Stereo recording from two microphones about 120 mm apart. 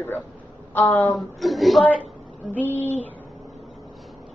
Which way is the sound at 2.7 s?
15° left (ahead or behind).